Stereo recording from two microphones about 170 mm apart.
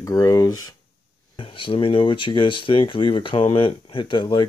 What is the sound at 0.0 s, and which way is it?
Speech, 20° left (ahead or behind).